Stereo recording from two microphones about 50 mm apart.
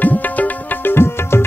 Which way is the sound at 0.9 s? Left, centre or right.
Left.